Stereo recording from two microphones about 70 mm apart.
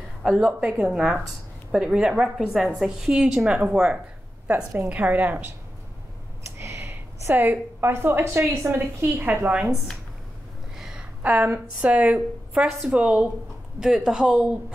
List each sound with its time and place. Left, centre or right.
0.2 s a woman's voice: centre
4.8 s speech: right
6.8 s a woman's voice: right
10.8 s a sound: centre
11.2 s speech: right
12.6 s a woman's voice: centre